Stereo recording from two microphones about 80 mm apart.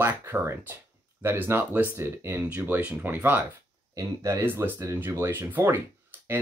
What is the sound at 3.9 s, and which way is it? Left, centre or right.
Speech, right.